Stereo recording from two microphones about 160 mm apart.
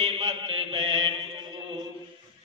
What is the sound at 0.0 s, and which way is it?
Mantra, 40° right (ahead or behind).